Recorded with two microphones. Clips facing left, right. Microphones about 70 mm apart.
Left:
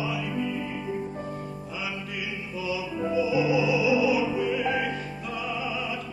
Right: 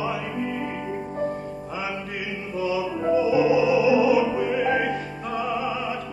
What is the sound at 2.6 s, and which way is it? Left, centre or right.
Music, right.